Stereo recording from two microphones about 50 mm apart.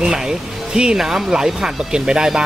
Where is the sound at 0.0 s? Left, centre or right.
Centre.